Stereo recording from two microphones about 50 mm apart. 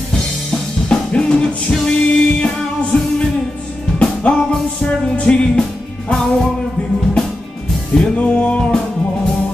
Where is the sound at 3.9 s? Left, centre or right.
Left.